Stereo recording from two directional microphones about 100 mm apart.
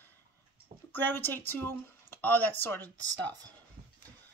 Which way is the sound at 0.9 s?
20° left (ahead or behind).